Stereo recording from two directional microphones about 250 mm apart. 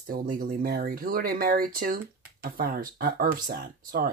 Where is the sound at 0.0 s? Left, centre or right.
Right.